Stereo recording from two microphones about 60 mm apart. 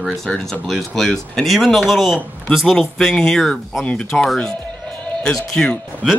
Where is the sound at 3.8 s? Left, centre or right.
Centre.